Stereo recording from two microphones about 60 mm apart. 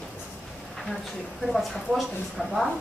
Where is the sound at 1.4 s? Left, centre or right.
Centre.